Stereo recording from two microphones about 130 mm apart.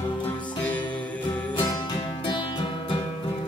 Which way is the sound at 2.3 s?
40° left (ahead or behind).